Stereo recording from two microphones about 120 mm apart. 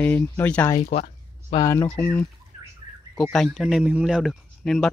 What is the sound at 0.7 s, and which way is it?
Speech, 70° left (ahead or behind).